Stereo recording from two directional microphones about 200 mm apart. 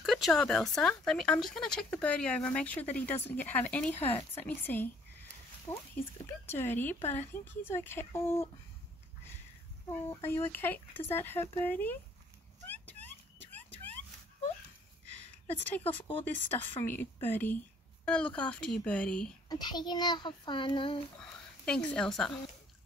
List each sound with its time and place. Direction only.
0.0 s speech: centre (ahead or behind)
10.0 s speech: 10° left (ahead or behind)
13.5 s vehicle: 10° left (ahead or behind)
15.8 s speech: 10° left (ahead or behind)
19.5 s a child's voice: 20° left (ahead or behind)
21.2 s speech: 5° left (ahead or behind)